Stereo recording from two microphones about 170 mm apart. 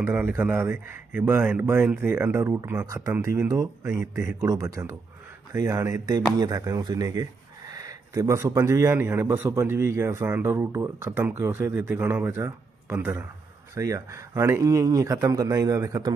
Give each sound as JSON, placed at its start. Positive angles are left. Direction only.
{"t": 0.0, "sound": "speech", "side_deg": -15}